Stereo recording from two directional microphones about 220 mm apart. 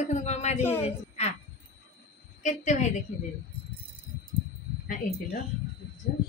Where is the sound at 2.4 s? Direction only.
35° left (ahead or behind).